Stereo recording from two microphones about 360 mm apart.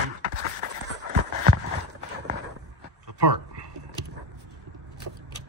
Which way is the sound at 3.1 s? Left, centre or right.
Right.